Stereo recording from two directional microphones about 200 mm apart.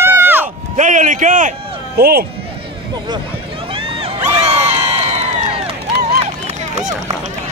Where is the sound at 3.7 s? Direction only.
30° right (ahead or behind).